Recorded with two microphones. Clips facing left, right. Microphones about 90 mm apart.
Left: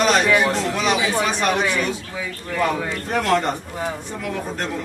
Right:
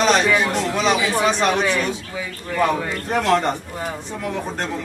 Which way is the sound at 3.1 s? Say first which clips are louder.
Right 1 dB; 15° right (ahead or behind).